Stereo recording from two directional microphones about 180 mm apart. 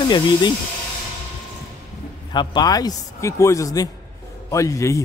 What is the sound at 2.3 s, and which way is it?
A man's voice, 25° left (ahead or behind).